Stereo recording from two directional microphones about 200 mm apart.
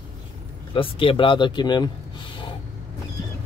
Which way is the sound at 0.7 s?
25° left (ahead or behind).